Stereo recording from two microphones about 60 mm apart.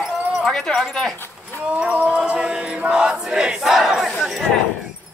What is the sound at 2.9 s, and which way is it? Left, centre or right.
Battle cry, centre.